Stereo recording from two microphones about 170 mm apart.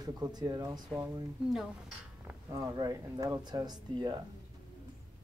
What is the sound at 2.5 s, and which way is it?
Speech, 20° right (ahead or behind).